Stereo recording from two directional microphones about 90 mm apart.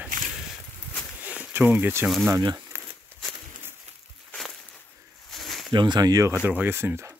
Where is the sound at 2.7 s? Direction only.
30° right (ahead or behind).